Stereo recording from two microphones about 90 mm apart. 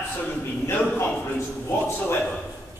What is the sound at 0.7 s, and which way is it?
Speech, 15° left (ahead or behind).